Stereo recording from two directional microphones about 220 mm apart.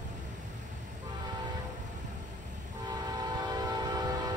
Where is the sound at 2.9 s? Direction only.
20° right (ahead or behind).